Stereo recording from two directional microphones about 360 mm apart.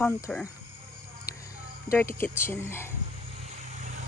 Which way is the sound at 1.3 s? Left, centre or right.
Centre.